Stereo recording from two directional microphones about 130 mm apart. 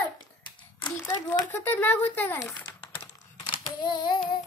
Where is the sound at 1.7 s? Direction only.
15° left (ahead or behind).